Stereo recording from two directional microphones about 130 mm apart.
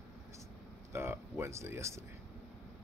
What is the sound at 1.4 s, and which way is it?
Speech, 20° right (ahead or behind).